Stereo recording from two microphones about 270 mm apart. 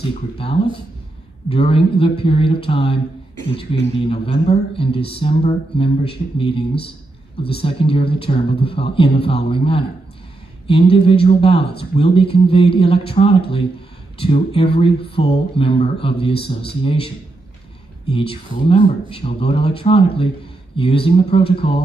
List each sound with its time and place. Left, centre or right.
1.5 s speech: left
18.1 s speech: left